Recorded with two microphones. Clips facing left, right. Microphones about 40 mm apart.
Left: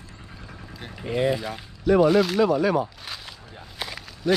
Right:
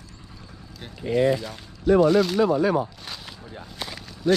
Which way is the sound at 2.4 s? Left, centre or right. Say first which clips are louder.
Even; left.